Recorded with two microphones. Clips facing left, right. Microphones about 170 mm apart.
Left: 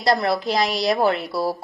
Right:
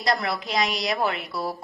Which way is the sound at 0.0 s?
30° left (ahead or behind).